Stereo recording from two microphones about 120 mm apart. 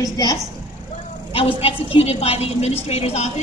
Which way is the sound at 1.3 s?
55° left (ahead or behind).